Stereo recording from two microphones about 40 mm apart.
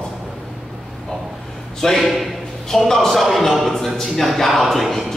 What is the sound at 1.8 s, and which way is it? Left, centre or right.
A man's voice, centre.